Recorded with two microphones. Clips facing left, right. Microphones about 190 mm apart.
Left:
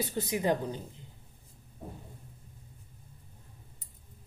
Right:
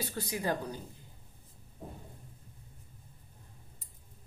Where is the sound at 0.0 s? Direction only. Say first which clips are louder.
Left 5 dB; 20° left (ahead or behind).